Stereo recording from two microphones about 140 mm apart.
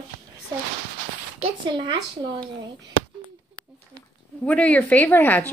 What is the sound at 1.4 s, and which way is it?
Speech, 35° right (ahead or behind).